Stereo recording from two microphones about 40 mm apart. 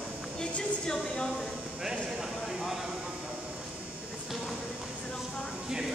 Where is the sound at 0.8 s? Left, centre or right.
Centre.